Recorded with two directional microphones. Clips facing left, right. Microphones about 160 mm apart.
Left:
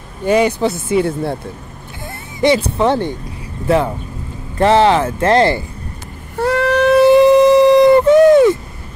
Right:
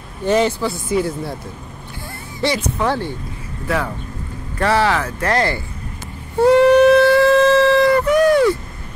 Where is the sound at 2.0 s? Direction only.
20° left (ahead or behind).